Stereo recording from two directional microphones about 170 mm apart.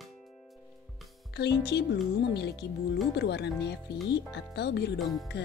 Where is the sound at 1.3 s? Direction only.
75° left (ahead or behind).